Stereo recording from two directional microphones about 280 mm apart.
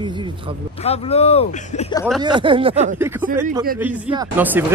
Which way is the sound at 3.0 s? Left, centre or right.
Centre.